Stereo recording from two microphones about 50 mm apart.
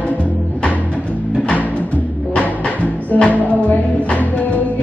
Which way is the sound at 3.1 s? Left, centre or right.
Left.